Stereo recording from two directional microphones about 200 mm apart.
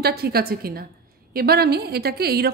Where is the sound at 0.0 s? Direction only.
50° right (ahead or behind).